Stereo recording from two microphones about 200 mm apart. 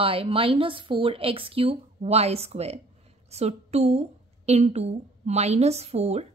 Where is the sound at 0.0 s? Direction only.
30° right (ahead or behind).